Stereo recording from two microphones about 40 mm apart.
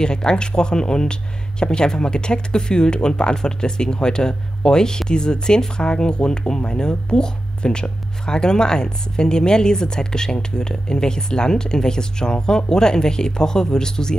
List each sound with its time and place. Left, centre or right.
0.0 s speech: centre